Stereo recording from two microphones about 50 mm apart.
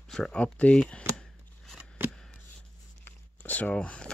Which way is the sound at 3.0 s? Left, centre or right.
Left.